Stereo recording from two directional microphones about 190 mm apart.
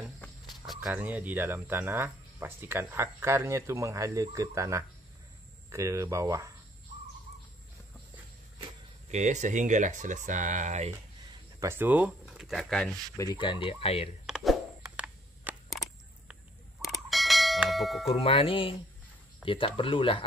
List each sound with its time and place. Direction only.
0.8 s speech: 5° right (ahead or behind)
9.1 s speech: 40° right (ahead or behind)
11.6 s speech: 10° right (ahead or behind)
13.2 s fowl: 20° left (ahead or behind)
14.2 s a sound: centre (ahead or behind)
16.8 s bell: centre (ahead or behind)
18.0 s fowl: 30° left (ahead or behind)